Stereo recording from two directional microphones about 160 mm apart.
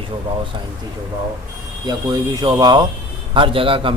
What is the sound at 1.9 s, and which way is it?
A man's voice, 25° right (ahead or behind).